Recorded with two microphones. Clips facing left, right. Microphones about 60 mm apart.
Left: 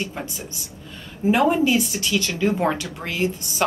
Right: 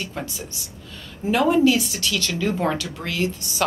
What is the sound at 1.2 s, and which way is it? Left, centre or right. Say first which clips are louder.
A woman's voice: right 1 dB; centre.